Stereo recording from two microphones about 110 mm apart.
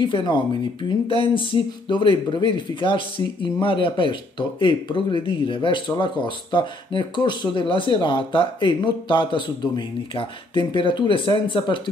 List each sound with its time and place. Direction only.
0.0 s speech: 45° left (ahead or behind)